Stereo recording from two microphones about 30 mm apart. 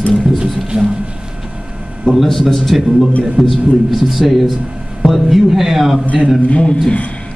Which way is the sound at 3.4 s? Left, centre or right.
Centre.